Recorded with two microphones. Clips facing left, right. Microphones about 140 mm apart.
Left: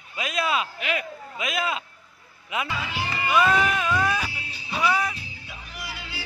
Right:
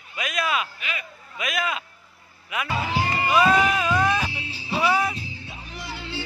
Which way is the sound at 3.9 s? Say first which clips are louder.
Right 3 dB; 25° right (ahead or behind).